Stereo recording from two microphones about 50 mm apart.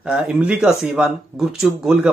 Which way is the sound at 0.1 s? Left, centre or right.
Centre.